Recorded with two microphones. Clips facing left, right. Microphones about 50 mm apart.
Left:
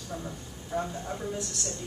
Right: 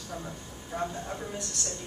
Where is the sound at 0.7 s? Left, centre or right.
Centre.